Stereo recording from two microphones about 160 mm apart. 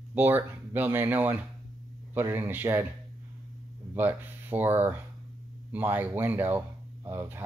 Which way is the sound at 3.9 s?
10° right (ahead or behind).